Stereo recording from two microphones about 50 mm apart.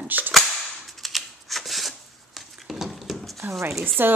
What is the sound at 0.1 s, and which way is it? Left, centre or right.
Speech, right.